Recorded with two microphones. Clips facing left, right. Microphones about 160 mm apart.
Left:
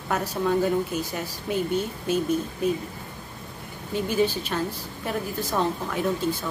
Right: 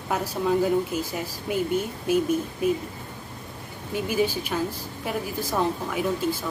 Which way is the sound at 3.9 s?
10° right (ahead or behind).